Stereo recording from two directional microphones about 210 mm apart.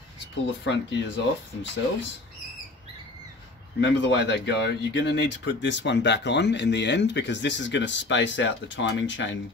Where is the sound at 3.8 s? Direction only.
60° left (ahead or behind).